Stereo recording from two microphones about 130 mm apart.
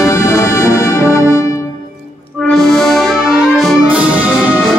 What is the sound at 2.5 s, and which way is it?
Music, centre (ahead or behind).